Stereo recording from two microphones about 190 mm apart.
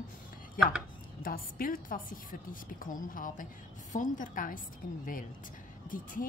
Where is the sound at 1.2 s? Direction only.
50° left (ahead or behind).